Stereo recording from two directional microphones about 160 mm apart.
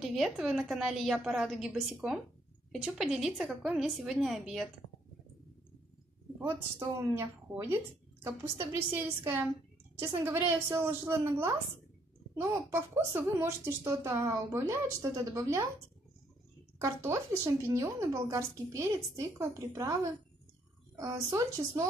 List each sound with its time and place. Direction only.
0.0 s a woman's voice: centre (ahead or behind)
7.0 s speech: 20° right (ahead or behind)
16.7 s a woman's voice: 20° right (ahead or behind)